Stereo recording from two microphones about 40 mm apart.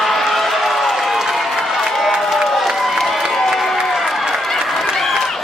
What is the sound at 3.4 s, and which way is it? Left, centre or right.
Crowd, centre.